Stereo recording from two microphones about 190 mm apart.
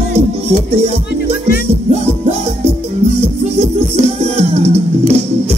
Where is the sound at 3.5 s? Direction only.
35° right (ahead or behind).